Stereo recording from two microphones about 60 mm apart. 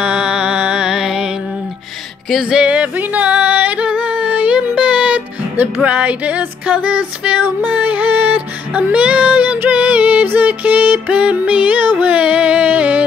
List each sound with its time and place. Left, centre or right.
0.0 s music: centre
2.5 s music: right